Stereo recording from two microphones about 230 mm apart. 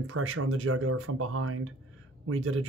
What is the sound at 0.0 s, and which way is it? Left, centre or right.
Speech, right.